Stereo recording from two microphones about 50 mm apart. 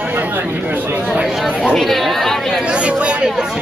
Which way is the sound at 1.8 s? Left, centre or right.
Centre.